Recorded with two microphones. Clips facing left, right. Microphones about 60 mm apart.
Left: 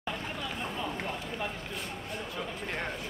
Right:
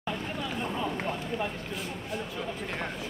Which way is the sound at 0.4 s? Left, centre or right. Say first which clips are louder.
Right 4 dB; centre.